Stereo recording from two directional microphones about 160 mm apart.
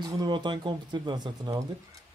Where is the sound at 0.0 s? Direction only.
30° right (ahead or behind).